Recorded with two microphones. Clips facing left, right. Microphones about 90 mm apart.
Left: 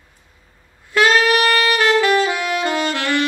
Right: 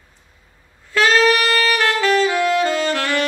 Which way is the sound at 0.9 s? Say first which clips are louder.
Even; 15° left (ahead or behind).